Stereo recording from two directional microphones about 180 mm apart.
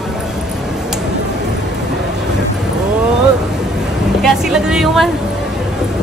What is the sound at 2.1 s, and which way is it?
Vehicle, 5° right (ahead or behind).